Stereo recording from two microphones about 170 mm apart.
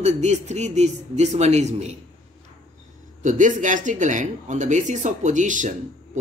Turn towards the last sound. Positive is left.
turn(degrees=-50)  # may be behind; listen again after turning